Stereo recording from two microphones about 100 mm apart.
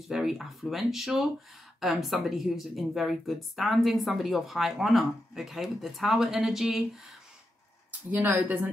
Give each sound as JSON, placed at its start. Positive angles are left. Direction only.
{"t": 0.1, "sound": "speech", "side_deg": -5}
{"t": 8.1, "sound": "speech", "side_deg": -15}